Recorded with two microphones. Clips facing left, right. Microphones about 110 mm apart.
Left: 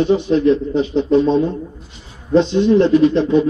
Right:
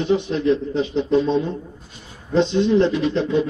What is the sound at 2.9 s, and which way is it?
Speech, 40° left (ahead or behind).